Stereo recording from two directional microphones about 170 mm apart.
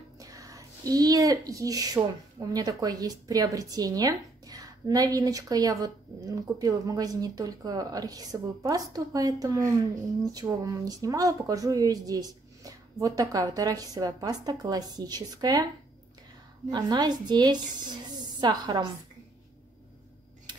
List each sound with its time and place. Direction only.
0.2 s speech: 20° right (ahead or behind)
16.7 s speech: 25° right (ahead or behind)
20.5 s tick-tock: 25° right (ahead or behind)